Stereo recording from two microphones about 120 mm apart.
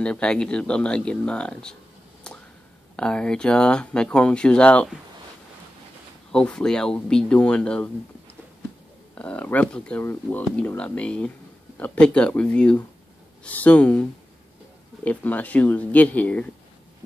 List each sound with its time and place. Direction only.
0.0 s speech: 5° left (ahead or behind)
2.3 s a sound: 10° left (ahead or behind)
3.0 s speech: 5° left (ahead or behind)
6.3 s speech: 5° left (ahead or behind)
9.1 s speech: 10° left (ahead or behind)
15.0 s speech: 10° left (ahead or behind)